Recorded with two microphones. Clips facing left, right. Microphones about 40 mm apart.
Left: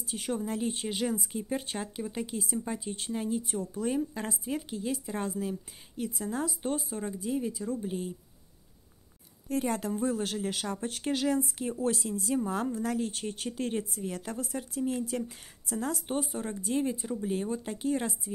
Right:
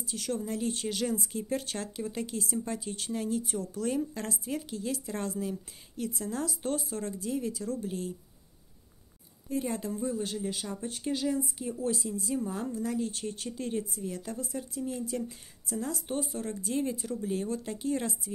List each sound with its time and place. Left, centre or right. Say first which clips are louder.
0.0 s a woman's voice: left 1 dB; left
6.6 s speech: even; centre
9.5 s a woman's voice: left 2 dB; left